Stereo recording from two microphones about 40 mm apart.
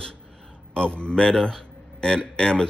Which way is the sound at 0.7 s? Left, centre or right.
Left.